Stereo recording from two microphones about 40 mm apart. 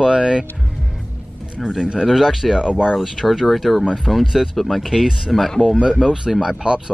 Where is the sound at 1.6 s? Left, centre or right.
Centre.